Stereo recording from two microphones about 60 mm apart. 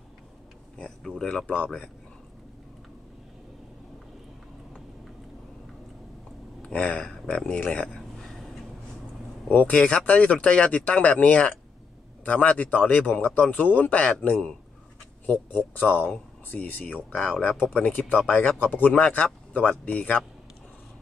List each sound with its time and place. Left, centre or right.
0.7 s speech: centre
6.6 s speech: centre
9.5 s speech: left
18.6 s speech: left